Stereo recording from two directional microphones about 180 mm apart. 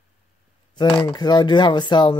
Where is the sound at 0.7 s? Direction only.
25° left (ahead or behind).